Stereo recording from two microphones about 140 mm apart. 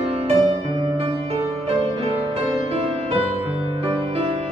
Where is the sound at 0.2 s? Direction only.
45° right (ahead or behind).